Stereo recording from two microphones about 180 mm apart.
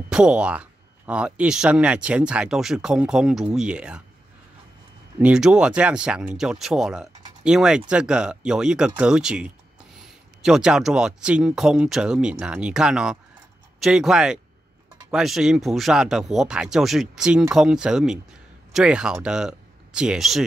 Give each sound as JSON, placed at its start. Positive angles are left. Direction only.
{"t": 0.1, "sound": "speech", "side_deg": -5}
{"t": 5.2, "sound": "speech", "side_deg": -5}